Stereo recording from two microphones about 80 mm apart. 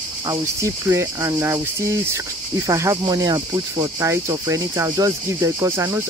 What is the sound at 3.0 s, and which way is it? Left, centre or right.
Speech, right.